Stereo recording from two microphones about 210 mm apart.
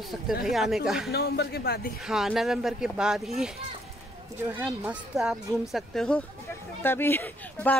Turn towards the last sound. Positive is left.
turn(degrees=5)  # may be behind; listen again after turning